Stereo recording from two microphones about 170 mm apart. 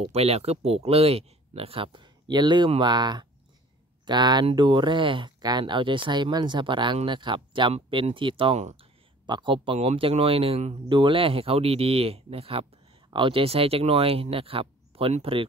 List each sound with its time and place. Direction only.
0.0 s speech: 35° right (ahead or behind)